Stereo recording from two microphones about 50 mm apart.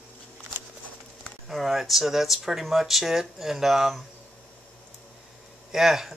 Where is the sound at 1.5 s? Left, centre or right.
Centre.